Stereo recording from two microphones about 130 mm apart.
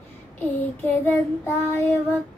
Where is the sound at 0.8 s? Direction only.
20° left (ahead or behind).